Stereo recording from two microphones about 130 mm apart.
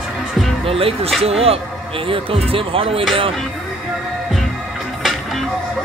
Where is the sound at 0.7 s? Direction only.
45° right (ahead or behind).